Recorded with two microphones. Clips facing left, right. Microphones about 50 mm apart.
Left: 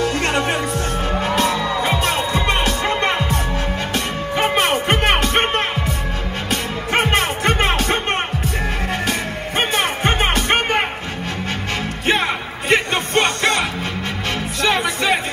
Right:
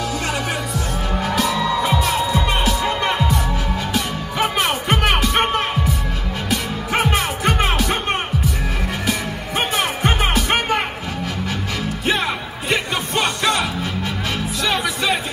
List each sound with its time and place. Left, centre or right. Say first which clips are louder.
0.0 s music: left 4 dB; left
9.6 s music: left 1 dB; left
12.1 s music: left 3 dB; left